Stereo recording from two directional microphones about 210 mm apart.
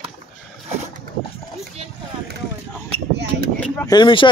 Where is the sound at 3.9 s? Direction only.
20° left (ahead or behind).